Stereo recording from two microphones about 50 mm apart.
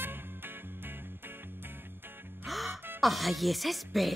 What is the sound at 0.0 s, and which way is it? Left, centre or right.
Music, right.